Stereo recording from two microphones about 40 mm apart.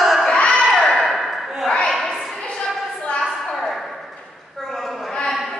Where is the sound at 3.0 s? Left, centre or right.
Left.